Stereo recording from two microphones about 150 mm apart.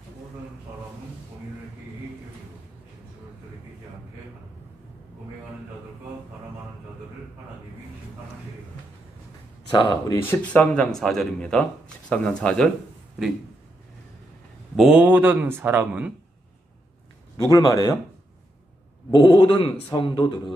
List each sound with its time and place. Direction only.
9.7 s speech: 30° left (ahead or behind)
10.1 s speech: 10° left (ahead or behind)
14.8 s speech: 10° right (ahead or behind)
17.4 s speech: 25° left (ahead or behind)
19.1 s a man's voice: 35° left (ahead or behind)